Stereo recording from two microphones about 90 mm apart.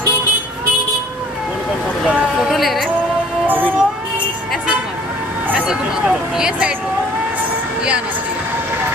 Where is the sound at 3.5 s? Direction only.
20° right (ahead or behind).